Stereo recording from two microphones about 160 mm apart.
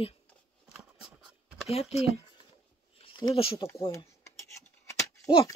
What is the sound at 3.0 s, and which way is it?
Speech, 30° left (ahead or behind).